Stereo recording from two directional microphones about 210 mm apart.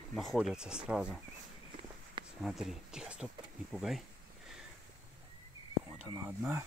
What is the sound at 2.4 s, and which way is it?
Speech, centre (ahead or behind).